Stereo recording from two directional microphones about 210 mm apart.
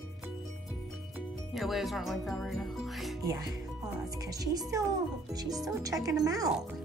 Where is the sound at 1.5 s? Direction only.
Centre (ahead or behind).